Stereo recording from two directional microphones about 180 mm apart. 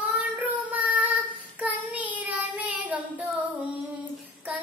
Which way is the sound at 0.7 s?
10° right (ahead or behind).